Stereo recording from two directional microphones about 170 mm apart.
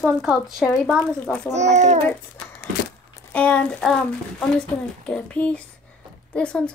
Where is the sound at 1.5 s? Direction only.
45° right (ahead or behind).